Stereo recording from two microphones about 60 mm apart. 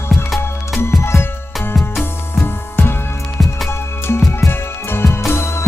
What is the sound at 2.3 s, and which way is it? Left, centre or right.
Music, left.